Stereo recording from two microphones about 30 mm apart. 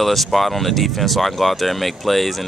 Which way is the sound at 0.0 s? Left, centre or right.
Centre.